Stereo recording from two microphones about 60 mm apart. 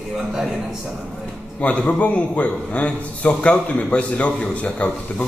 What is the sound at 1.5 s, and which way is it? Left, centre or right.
Speech, left.